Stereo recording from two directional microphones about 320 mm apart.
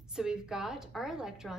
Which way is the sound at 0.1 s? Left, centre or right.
Centre.